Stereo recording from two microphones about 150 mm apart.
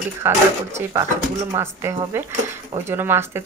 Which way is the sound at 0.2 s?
15° right (ahead or behind).